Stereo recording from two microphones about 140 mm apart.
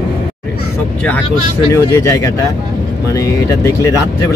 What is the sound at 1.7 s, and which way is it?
Speech, 20° left (ahead or behind).